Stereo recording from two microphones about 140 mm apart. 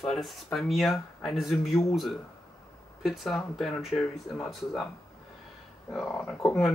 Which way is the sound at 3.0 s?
Centre (ahead or behind).